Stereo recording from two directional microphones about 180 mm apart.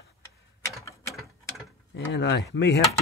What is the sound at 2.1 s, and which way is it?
Speech, 80° left.